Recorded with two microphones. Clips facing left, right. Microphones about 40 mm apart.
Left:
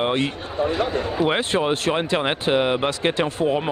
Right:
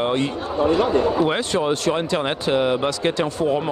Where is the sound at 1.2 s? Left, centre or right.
Left.